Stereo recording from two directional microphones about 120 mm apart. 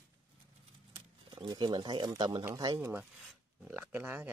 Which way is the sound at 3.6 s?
15° right (ahead or behind).